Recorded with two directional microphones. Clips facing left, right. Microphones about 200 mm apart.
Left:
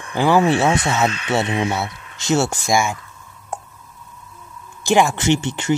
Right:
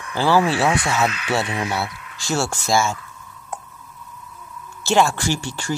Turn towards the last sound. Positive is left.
turn(degrees=20)  # may be behind; listen again after turning